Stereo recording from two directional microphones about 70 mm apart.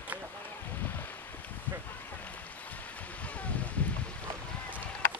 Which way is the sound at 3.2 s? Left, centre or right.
Centre.